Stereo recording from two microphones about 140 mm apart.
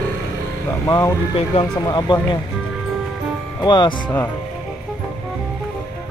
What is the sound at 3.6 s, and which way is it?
Speech, 30° left (ahead or behind).